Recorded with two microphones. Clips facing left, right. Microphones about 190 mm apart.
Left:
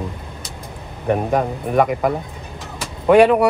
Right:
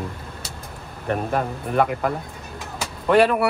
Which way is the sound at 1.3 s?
10° left (ahead or behind).